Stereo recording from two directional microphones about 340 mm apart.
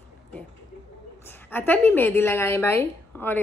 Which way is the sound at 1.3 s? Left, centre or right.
Centre.